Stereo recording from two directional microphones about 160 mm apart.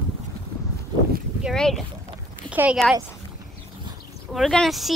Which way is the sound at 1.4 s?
Centre (ahead or behind).